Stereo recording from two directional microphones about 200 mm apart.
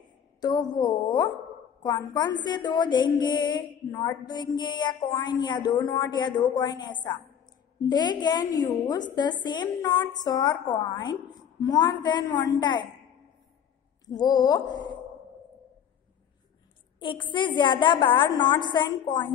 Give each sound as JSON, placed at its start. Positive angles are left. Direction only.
{"t": 0.4, "sound": "a woman's voice", "side_deg": 20}
{"t": 14.0, "sound": "a woman's voice", "side_deg": 20}
{"t": 17.0, "sound": "a woman's voice", "side_deg": 25}